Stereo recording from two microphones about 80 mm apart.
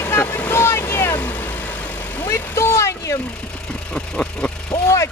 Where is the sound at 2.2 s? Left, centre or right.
Left.